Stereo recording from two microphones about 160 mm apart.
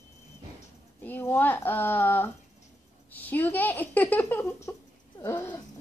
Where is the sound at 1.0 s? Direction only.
15° left (ahead or behind).